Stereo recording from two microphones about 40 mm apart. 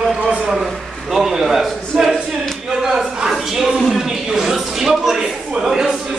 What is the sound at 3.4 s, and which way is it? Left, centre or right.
Speech, centre.